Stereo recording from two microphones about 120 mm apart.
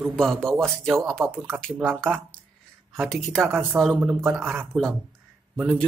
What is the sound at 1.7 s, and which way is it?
Speech, 5° right (ahead or behind).